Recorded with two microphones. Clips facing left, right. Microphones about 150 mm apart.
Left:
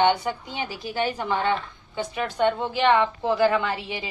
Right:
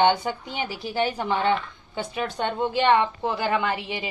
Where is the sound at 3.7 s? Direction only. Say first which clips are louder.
Right 1 dB; 20° right (ahead or behind).